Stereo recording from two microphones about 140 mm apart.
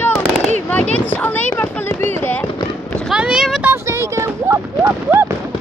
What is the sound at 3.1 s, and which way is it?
Boat, 5° right (ahead or behind).